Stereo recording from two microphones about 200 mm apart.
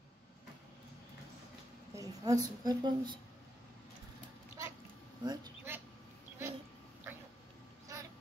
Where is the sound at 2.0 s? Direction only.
20° right (ahead or behind).